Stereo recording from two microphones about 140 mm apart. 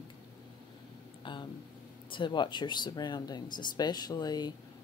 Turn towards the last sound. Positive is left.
turn(degrees=30)  # may be behind; listen again after turning